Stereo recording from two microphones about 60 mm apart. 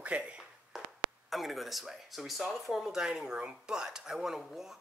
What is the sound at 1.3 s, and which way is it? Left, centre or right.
Speech, centre.